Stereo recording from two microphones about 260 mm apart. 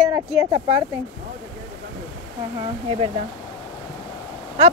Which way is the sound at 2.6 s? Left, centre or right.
Right.